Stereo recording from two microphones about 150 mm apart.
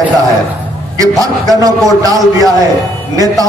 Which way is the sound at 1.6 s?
25° right (ahead or behind).